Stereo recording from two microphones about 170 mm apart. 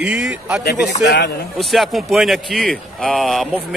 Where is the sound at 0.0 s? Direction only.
5° right (ahead or behind).